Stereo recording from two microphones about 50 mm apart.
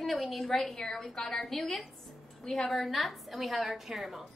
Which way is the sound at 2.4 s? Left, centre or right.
Centre.